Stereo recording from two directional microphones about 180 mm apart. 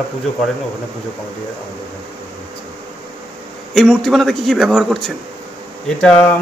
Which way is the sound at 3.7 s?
Centre (ahead or behind).